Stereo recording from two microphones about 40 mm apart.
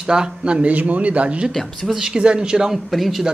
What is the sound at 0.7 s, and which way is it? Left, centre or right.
Speech, right.